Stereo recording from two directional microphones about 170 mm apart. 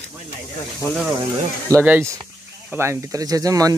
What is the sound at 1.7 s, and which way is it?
Speech, 15° right (ahead or behind).